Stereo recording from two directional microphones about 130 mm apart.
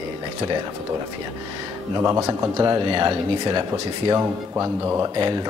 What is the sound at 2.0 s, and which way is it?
Speech, 25° right (ahead or behind).